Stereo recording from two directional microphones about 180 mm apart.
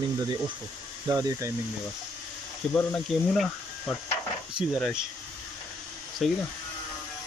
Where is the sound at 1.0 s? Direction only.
15° right (ahead or behind).